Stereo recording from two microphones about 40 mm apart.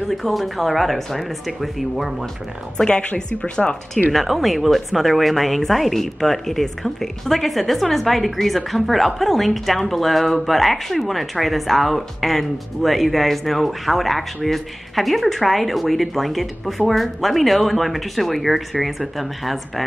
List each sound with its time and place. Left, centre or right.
0.1 s a woman's voice: centre
3.2 s speech: left
4.1 s speech: centre